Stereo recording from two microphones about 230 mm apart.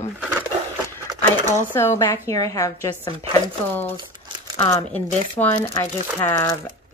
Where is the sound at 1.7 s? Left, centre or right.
Centre.